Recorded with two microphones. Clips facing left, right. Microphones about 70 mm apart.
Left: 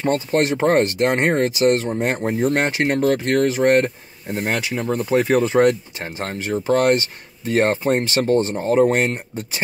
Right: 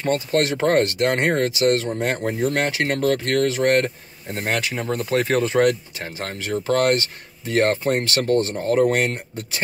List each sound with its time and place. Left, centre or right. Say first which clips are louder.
0.1 s speech: even; left
5.4 s speech: left 2 dB; left